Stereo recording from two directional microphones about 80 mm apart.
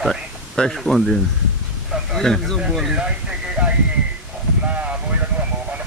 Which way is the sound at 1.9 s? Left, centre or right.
Centre.